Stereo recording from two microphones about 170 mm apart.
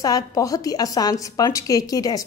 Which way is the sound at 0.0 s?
20° left (ahead or behind).